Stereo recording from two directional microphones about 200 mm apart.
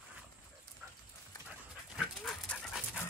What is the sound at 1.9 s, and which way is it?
Dog, centre (ahead or behind).